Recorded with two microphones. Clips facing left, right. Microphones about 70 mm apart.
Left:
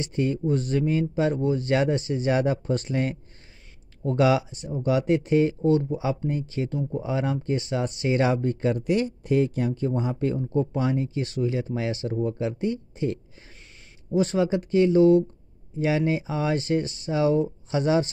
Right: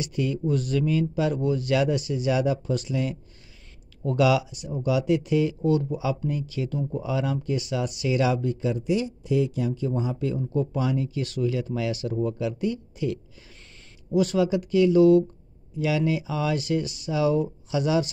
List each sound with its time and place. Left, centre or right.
0.0 s speech: left